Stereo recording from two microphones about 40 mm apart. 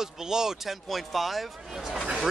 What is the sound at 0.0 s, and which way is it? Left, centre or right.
Speech, centre.